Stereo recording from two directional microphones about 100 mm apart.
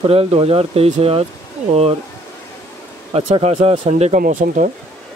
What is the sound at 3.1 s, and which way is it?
Speech, 90° right.